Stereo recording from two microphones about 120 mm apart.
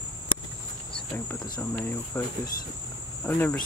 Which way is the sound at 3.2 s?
15° left (ahead or behind).